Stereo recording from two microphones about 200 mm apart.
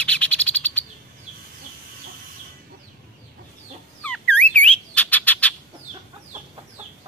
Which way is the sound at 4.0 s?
5° left (ahead or behind).